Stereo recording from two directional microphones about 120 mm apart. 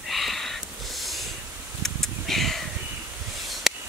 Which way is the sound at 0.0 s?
Centre (ahead or behind).